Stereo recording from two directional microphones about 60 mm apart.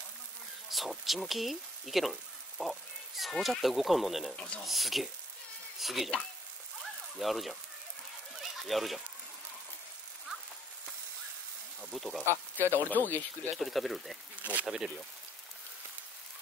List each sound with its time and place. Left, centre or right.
0.7 s speech: centre
4.4 s speech: centre
4.6 s speech: centre
6.8 s a sound: centre
11.8 s speech: centre
12.5 s speech: left
13.6 s speech: centre
14.3 s speech: right